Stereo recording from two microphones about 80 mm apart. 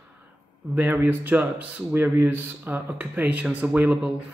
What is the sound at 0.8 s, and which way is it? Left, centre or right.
Speech, right.